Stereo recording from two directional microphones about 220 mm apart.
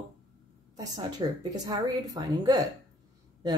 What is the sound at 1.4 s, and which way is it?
A woman's voice, 15° right (ahead or behind).